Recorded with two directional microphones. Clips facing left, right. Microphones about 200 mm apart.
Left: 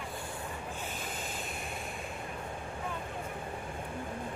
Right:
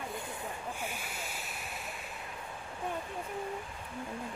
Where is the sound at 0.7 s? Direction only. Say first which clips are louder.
Left 1 dB; 10° right (ahead or behind).